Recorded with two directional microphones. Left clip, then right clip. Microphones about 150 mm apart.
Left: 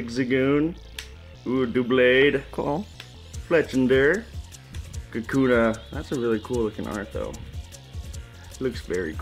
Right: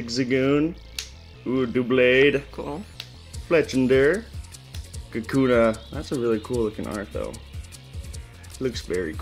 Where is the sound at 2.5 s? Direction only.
30° left (ahead or behind).